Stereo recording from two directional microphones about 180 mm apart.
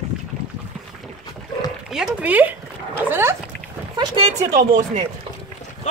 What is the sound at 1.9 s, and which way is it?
Speech, 5° right (ahead or behind).